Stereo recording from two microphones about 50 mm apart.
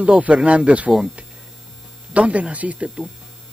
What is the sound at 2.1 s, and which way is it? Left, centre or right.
Speech, right.